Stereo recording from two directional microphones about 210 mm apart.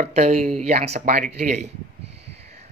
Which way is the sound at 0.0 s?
35° right (ahead or behind).